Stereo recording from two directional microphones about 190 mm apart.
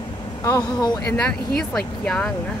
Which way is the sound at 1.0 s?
5° left (ahead or behind).